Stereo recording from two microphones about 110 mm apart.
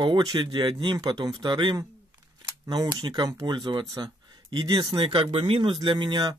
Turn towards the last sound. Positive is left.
turn(degrees=-40)  # may be behind; listen again after turning